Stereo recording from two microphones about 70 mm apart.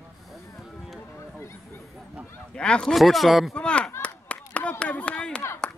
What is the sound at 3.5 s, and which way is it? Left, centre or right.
Chop, centre.